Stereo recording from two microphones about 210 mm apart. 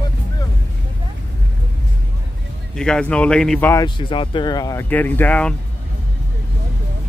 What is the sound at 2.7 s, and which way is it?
Speech, 5° left (ahead or behind).